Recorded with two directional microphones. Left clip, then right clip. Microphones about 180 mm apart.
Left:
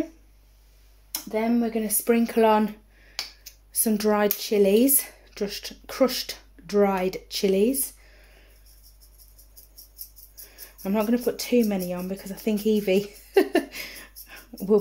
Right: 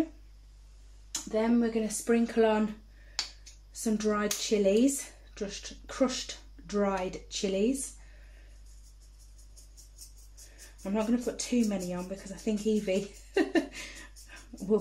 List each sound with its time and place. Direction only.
1.1 s speech: 25° left (ahead or behind)
2.0 s speech: 50° left (ahead or behind)
3.8 s speech: 60° left (ahead or behind)
10.8 s speech: 55° left (ahead or behind)